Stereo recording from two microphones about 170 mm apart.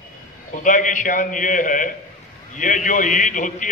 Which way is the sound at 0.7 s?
50° left (ahead or behind).